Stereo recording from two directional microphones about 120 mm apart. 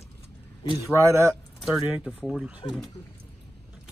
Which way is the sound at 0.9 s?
20° right (ahead or behind).